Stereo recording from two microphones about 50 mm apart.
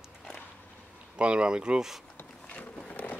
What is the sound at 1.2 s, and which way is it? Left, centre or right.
Speech, right.